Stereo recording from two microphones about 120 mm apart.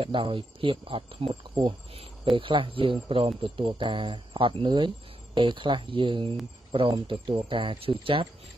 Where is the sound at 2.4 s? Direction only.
45° right (ahead or behind).